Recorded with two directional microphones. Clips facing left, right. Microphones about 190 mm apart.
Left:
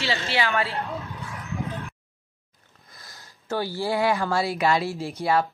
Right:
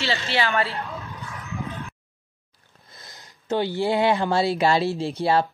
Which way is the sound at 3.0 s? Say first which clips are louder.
Right 2 dB; 20° right (ahead or behind).